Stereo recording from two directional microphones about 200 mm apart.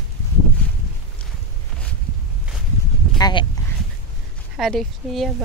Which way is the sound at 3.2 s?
20° left (ahead or behind).